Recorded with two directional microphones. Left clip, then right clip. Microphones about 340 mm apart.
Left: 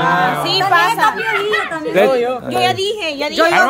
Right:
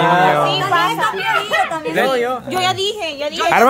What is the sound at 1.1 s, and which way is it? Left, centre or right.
A man's voice, right.